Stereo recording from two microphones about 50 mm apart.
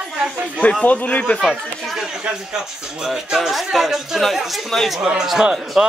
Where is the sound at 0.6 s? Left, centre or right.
Left.